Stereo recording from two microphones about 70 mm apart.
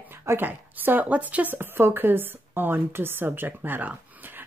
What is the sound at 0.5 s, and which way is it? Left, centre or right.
Speech, right.